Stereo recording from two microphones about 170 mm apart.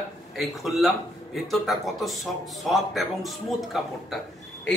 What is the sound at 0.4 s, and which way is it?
A man's voice, centre (ahead or behind).